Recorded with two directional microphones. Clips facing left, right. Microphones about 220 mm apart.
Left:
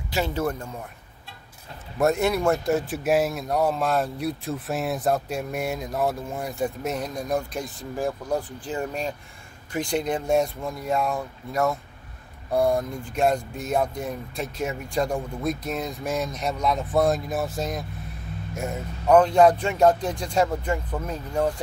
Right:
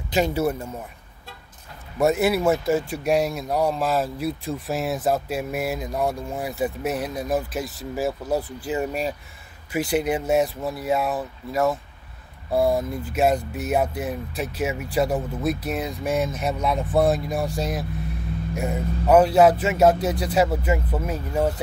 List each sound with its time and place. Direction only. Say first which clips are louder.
0.1 s speech: right 4 dB; 15° right (ahead or behind)
2.0 s speech: right 2 dB; 5° right (ahead or behind)